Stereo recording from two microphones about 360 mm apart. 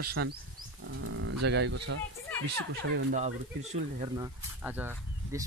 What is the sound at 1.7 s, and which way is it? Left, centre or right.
Speech, right.